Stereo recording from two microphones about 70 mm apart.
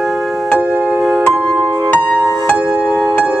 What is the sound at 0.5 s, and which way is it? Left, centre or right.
Music, right.